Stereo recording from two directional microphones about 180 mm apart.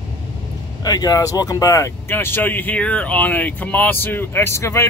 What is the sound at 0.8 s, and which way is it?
Speech, 20° left (ahead or behind).